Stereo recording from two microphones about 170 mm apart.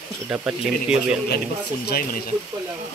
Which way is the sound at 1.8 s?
60° left (ahead or behind).